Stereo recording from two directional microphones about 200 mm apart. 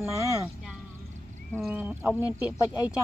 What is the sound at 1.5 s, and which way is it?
Speech, 5° right (ahead or behind).